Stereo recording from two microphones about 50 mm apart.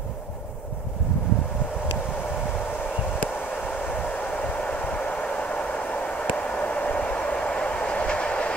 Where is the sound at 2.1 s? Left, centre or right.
Left.